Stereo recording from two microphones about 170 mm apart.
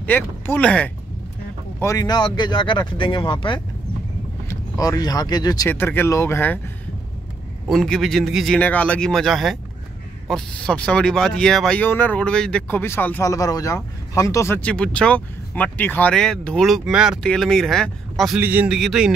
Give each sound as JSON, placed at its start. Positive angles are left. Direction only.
{"t": 0.0, "sound": "speech", "side_deg": 10}
{"t": 1.8, "sound": "speech", "side_deg": 20}
{"t": 7.6, "sound": "speech", "side_deg": 0}